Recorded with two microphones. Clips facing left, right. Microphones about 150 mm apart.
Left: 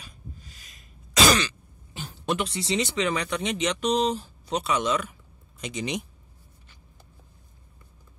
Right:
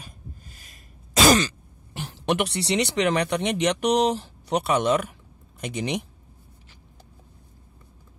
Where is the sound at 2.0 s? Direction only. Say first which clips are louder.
Right 4 dB; 75° right (ahead or behind).